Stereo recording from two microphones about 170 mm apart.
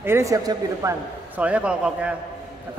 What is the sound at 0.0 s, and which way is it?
Speech, 15° right (ahead or behind).